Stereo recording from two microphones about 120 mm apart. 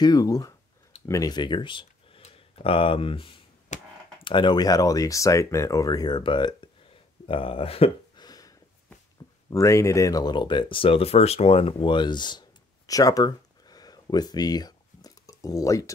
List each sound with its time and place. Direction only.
0.0 s speech: 30° left (ahead or behind)
3.7 s speech: 90° left
4.2 s speech: 40° left (ahead or behind)
8.2 s a sound: 30° left (ahead or behind)
9.5 s speech: 25° left (ahead or behind)